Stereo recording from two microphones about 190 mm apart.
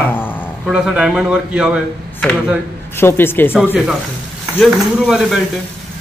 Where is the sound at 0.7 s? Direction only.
5° right (ahead or behind).